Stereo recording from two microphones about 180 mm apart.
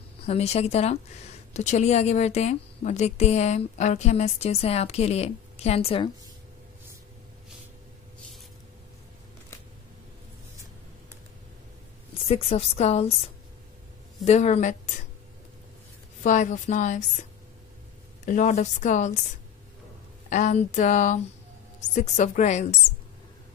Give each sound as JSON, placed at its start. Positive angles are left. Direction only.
{"t": 0.3, "sound": "a woman's voice", "side_deg": 35}
{"t": 12.1, "sound": "a woman's voice", "side_deg": 35}
{"t": 14.2, "sound": "a woman's voice", "side_deg": 40}
{"t": 16.2, "sound": "speech", "side_deg": 45}
{"t": 18.2, "sound": "speech", "side_deg": 45}
{"t": 20.2, "sound": "a woman's voice", "side_deg": 45}